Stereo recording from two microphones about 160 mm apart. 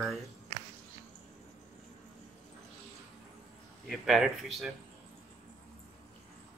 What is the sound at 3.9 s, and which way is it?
Speech, centre (ahead or behind).